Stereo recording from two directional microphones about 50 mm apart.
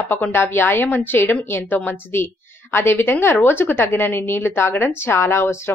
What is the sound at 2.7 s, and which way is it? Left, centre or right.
A woman's voice, left.